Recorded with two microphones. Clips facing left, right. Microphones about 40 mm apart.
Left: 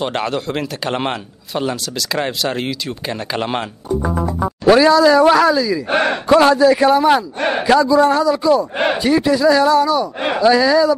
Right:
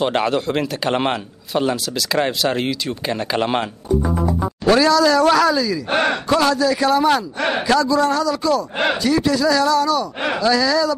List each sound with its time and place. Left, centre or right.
0.0 s a man's voice: centre
4.0 s music: left
4.6 s speech: centre
5.9 s speech: left